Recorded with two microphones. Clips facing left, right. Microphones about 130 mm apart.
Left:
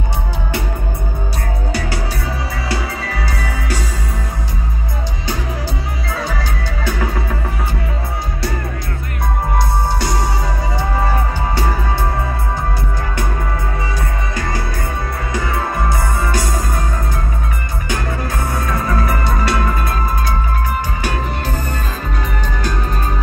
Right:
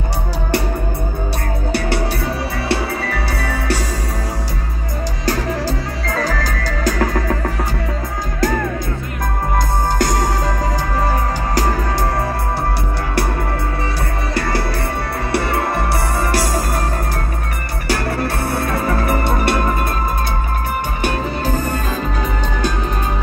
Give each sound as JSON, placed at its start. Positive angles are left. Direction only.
{"t": 3.3, "sound": "music", "side_deg": -30}
{"t": 6.4, "sound": "music", "side_deg": -90}
{"t": 15.3, "sound": "music", "side_deg": -70}
{"t": 17.8, "sound": "music", "side_deg": -75}
{"t": 18.8, "sound": "music", "side_deg": -30}
{"t": 19.4, "sound": "music", "side_deg": -50}